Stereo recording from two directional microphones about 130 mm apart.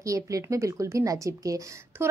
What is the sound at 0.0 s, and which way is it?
A woman's voice, 25° right (ahead or behind).